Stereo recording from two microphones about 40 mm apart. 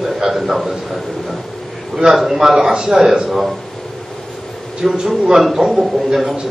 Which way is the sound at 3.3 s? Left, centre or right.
Centre.